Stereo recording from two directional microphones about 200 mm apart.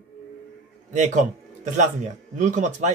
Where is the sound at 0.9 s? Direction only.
40° right (ahead or behind).